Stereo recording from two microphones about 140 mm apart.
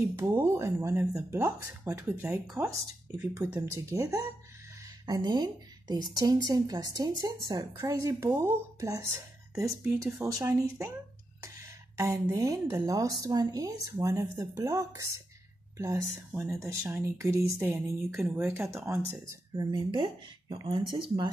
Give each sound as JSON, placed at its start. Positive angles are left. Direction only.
{"t": 0.1, "sound": "a woman's voice", "side_deg": -20}
{"t": 2.2, "sound": "speech", "side_deg": -5}
{"t": 3.5, "sound": "a woman's voice", "side_deg": -20}
{"t": 12.0, "sound": "a woman's voice", "side_deg": -20}
{"t": 19.5, "sound": "speech", "side_deg": -30}